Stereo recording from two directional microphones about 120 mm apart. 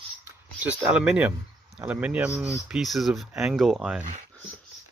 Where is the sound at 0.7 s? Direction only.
5° right (ahead or behind).